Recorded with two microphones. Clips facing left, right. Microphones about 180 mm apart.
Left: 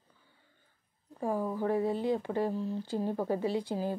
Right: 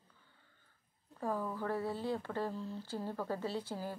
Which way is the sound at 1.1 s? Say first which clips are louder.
Left 6 dB; 15° left (ahead or behind).